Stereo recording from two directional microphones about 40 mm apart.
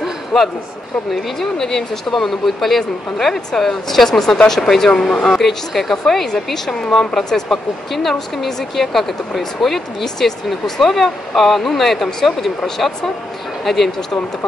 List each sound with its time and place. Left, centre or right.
0.3 s a man's voice: centre
5.3 s speech: centre